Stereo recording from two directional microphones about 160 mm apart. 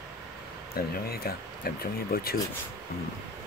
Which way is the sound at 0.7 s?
70° left (ahead or behind).